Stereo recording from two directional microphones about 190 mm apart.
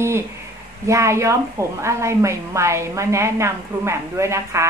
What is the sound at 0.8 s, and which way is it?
A woman's voice, 15° right (ahead or behind).